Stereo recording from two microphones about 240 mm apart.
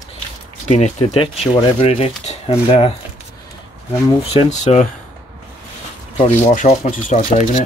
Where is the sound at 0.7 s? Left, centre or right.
Left.